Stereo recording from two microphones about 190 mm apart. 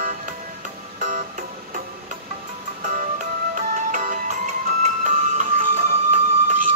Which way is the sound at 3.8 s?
45° right (ahead or behind).